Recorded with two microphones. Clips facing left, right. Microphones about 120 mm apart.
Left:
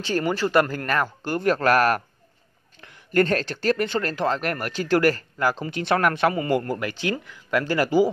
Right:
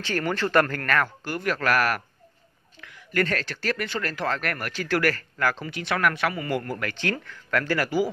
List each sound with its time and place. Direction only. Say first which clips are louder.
0.0 s speech: left 3 dB; 15° left (ahead or behind)
6.7 s speech: left 3 dB; 15° left (ahead or behind)